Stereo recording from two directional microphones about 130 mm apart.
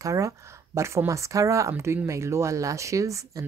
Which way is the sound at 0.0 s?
25° right (ahead or behind).